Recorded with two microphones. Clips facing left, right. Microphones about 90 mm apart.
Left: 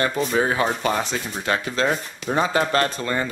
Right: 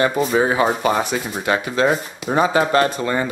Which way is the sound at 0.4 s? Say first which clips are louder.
Right 3 dB; 15° right (ahead or behind).